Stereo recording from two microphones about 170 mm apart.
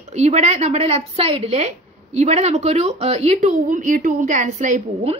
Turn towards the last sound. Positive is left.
turn(degrees=-45)  # may be behind; listen again after turning